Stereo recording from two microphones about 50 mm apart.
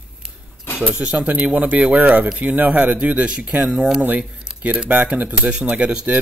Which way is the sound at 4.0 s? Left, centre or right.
Right.